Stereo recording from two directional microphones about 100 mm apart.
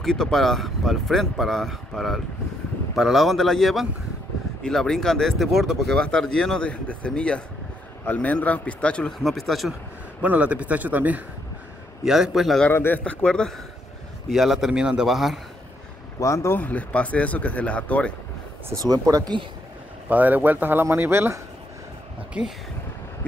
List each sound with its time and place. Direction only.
0.0 s speech: 5° left (ahead or behind)
9.2 s speech: centre (ahead or behind)
10.2 s a man's voice: 15° right (ahead or behind)
12.0 s speech: 5° right (ahead or behind)
12.7 s speech: 20° left (ahead or behind); by 15.4 s centre (ahead or behind)
16.2 s speech: 30° left (ahead or behind); by 18.1 s 15° left (ahead or behind)
18.7 s speech: 35° right (ahead or behind)
20.1 s speech: 15° right (ahead or behind)
22.3 s a man's voice: 10° right (ahead or behind)